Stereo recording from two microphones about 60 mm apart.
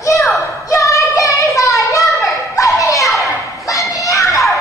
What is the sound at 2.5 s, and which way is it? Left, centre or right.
Children playing, left.